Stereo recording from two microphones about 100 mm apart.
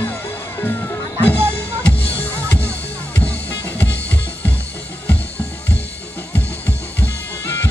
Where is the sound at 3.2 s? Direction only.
15° left (ahead or behind).